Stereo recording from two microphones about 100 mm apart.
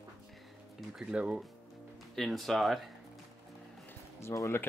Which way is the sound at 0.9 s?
10° right (ahead or behind).